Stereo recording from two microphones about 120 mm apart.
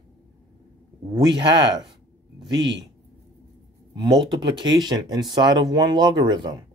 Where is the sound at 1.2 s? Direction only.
35° right (ahead or behind).